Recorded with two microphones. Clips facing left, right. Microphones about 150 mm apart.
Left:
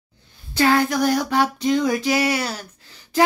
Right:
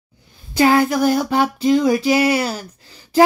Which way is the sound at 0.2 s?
15° right (ahead or behind).